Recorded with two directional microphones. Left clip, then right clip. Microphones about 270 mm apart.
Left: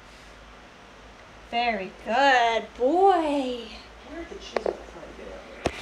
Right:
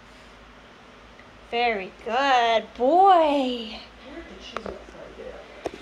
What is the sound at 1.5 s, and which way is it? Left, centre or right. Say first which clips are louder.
Speech: right 2 dB; centre.